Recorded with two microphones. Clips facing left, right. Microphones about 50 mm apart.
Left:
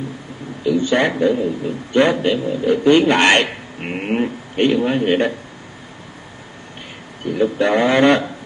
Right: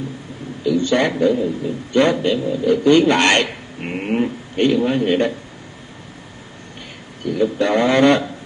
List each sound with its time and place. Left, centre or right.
0.7 s a man's voice: centre
7.2 s a man's voice: centre